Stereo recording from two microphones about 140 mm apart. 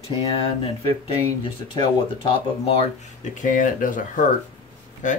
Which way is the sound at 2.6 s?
45° left (ahead or behind).